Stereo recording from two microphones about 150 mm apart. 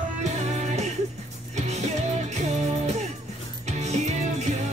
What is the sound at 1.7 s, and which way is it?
Music, 50° right (ahead or behind).